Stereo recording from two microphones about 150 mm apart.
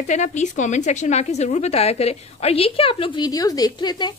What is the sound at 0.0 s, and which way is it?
A woman's voice, 50° left (ahead or behind).